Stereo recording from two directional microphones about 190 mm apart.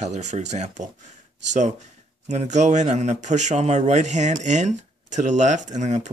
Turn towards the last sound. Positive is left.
turn(degrees=-40)  # may be behind; listen again after turning